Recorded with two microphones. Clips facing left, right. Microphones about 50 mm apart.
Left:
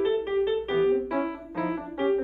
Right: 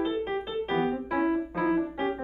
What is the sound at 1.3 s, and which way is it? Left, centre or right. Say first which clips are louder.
Keyboard: right 4 dB; centre.